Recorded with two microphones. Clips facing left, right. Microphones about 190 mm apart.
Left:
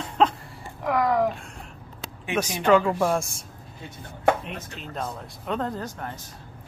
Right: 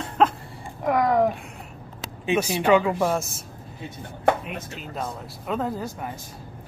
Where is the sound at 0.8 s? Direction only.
20° right (ahead or behind).